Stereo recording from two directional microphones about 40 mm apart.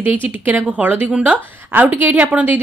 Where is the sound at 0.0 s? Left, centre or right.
Right.